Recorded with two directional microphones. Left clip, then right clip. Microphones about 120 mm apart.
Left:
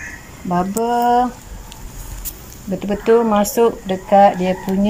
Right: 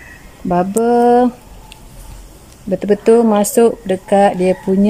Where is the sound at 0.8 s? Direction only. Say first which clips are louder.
Right 4 dB; 35° right (ahead or behind).